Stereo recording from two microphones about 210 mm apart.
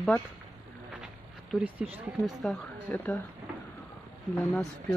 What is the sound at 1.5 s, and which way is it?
Speech, 5° right (ahead or behind).